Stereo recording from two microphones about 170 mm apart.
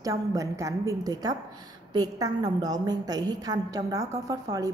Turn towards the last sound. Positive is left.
turn(degrees=-20)  # may be behind; listen again after turning